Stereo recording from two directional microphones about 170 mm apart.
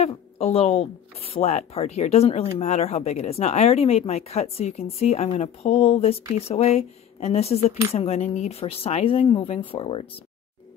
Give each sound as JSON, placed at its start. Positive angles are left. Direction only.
{"t": 0.0, "sound": "a woman's voice", "side_deg": 35}